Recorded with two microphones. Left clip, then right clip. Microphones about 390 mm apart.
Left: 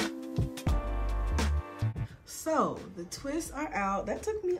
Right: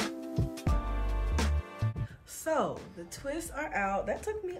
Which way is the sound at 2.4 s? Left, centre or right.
Centre.